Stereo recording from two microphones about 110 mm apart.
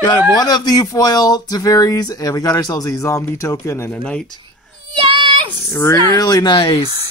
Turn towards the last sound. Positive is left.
turn(degrees=50)  # may be behind; listen again after turning